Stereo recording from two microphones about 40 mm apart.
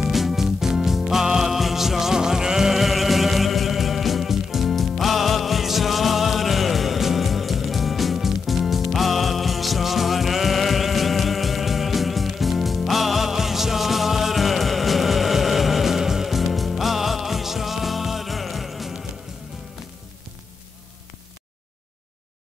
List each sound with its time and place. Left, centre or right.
0.0 s music: centre